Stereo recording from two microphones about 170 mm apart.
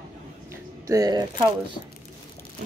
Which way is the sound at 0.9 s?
20° right (ahead or behind).